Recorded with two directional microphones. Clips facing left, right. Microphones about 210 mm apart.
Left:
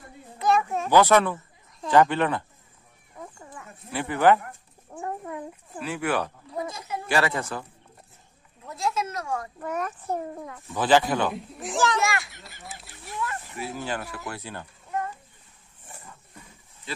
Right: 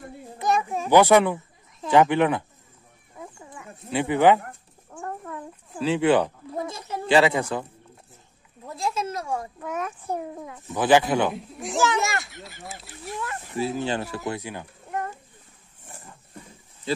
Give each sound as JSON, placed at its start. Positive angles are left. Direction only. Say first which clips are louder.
{"t": 0.4, "sound": "children playing", "louder": "left 1 dB", "side_deg": -20}
{"t": 0.8, "sound": "speech", "louder": "right 3 dB", "side_deg": -15}
{"t": 3.2, "sound": "a sound", "louder": "right 1 dB", "side_deg": -10}
{"t": 3.9, "sound": "speech", "louder": "right 2 dB", "side_deg": -20}
{"t": 5.0, "sound": "a sound", "louder": "left 1 dB", "side_deg": 15}
{"t": 5.8, "sound": "speech", "louder": "right 7 dB", "side_deg": -25}
{"t": 8.6, "sound": "a sound", "louder": "even", "side_deg": -30}
{"t": 9.6, "sound": "a child's voice", "louder": "even", "side_deg": 0}
{"t": 10.4, "sound": "speech", "louder": "right 2 dB", "side_deg": -15}
{"t": 11.3, "sound": "a child's voice", "louder": "right 2 dB", "side_deg": 0}
{"t": 12.0, "sound": "speech", "louder": "even", "side_deg": -25}
{"t": 12.3, "sound": "speech", "louder": "right 4 dB", "side_deg": 0}
{"t": 13.7, "sound": "speech", "louder": "right 5 dB", "side_deg": -25}